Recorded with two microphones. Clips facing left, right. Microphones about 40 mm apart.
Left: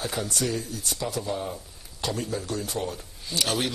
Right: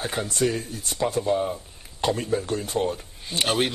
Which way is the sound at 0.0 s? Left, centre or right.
Right.